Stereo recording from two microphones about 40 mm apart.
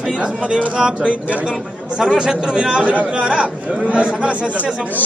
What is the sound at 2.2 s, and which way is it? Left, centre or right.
Speech, right.